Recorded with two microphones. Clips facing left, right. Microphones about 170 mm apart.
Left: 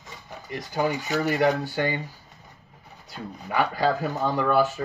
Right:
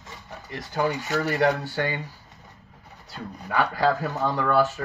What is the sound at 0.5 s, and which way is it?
Speech, 10° left (ahead or behind).